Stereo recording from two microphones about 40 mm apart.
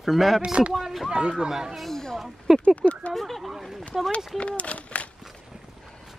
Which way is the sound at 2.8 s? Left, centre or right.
Left.